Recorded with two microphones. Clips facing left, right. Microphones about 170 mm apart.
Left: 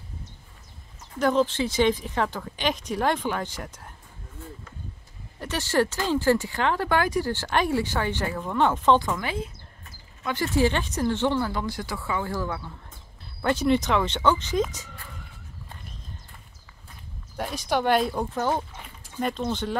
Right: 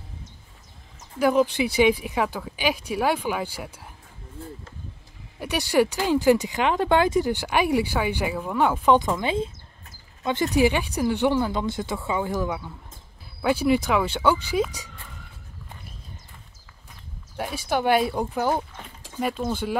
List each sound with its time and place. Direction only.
1.2 s speech: 10° right (ahead or behind)
5.4 s speech: 15° right (ahead or behind)
17.4 s speech: 5° right (ahead or behind)